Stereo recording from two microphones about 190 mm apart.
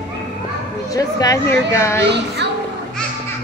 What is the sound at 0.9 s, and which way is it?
Speech, 20° left (ahead or behind).